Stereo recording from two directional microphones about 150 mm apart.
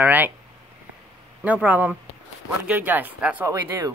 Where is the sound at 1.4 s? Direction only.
10° right (ahead or behind).